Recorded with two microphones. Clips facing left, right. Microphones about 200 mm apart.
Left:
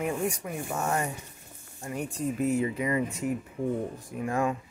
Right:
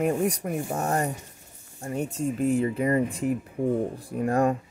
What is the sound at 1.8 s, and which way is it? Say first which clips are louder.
Speech: right 3 dB; 25° right (ahead or behind).